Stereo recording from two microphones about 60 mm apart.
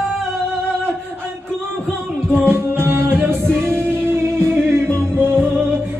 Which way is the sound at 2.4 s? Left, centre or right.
Right.